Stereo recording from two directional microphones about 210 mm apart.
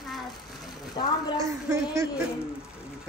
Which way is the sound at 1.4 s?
15° right (ahead or behind).